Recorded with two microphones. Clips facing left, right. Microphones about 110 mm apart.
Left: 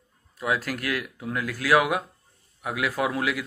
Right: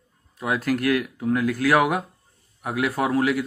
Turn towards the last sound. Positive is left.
turn(degrees=-40)  # may be behind; listen again after turning